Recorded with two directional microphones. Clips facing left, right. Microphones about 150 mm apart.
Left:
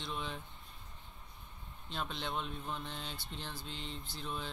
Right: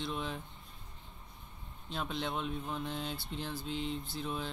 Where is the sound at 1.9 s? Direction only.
Centre (ahead or behind).